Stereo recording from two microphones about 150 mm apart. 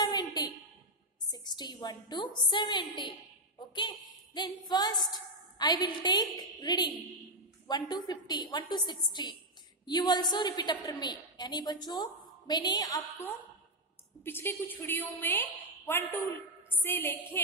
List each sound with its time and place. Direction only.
0.0 s a sound: 25° left (ahead or behind)
1.3 s a woman's voice: 30° left (ahead or behind)
14.2 s a woman's voice: 15° left (ahead or behind)